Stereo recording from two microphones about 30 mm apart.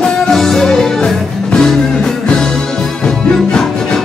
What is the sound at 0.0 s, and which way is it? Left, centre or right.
Music, centre.